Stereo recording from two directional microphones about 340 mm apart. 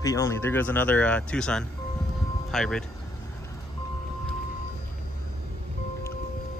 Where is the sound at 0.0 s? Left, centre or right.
Centre.